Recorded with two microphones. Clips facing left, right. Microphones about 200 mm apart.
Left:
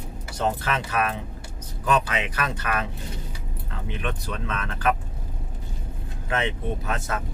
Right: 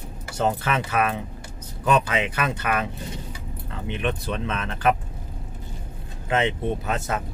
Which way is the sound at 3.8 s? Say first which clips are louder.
Right 5 dB; 25° right (ahead or behind).